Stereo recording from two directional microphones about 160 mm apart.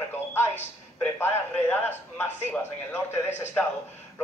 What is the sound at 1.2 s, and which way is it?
A man's voice, 15° left (ahead or behind).